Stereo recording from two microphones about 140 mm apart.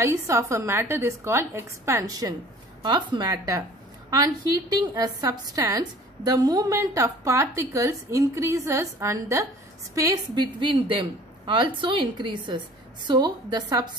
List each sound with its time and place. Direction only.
0.0 s a woman's voice: 20° right (ahead or behind)